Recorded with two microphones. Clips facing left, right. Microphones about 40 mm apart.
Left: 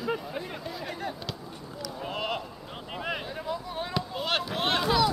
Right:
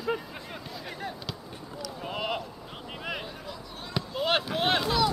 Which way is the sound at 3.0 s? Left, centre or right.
Centre.